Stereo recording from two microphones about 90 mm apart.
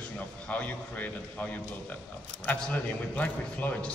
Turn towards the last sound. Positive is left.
turn(degrees=15)  # may be behind; listen again after turning